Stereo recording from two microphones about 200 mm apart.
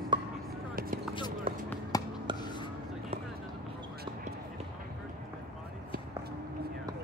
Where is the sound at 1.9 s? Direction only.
20° left (ahead or behind).